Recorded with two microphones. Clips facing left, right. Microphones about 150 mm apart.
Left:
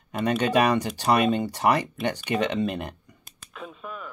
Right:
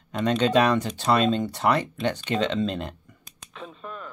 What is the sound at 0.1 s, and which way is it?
Speech, 10° left (ahead or behind).